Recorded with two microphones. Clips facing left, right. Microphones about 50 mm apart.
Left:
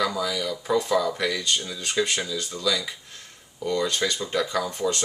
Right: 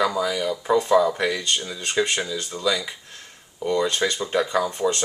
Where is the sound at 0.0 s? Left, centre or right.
Centre.